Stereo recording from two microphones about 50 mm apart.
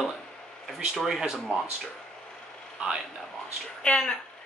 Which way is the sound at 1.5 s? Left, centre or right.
Right.